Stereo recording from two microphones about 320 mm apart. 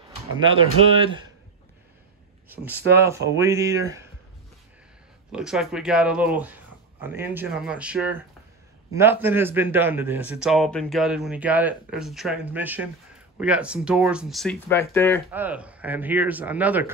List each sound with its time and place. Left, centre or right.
0.9 s speech: centre
2.5 s speech: centre
5.3 s a man's voice: centre
15.3 s a man's voice: centre